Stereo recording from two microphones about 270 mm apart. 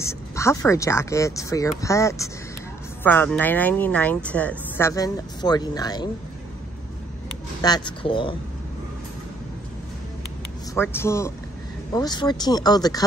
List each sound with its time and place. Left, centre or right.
0.0 s speech: centre
7.6 s speech: centre
10.7 s speech: centre